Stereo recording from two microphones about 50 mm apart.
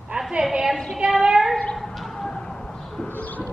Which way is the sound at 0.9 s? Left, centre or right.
Centre.